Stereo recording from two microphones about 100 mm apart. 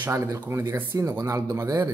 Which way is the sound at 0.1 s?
30° right (ahead or behind).